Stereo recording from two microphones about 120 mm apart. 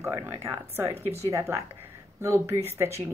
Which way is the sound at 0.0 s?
25° right (ahead or behind).